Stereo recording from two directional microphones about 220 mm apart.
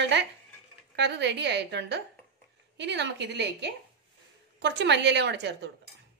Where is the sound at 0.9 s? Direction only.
50° right (ahead or behind).